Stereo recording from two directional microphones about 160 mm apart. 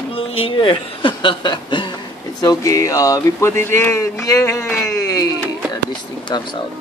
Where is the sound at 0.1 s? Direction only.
35° left (ahead or behind).